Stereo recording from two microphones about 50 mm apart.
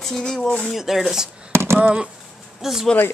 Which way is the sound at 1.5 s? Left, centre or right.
Right.